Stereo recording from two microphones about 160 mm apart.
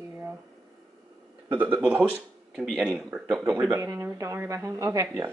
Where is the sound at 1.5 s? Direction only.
10° right (ahead or behind).